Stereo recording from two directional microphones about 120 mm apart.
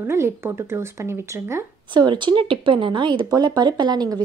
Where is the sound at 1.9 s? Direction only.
40° right (ahead or behind).